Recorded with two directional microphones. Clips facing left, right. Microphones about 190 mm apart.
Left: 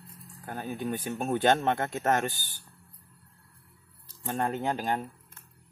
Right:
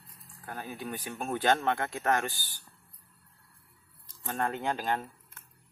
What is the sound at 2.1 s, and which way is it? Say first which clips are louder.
Speech: left 1 dB; 20° left (ahead or behind).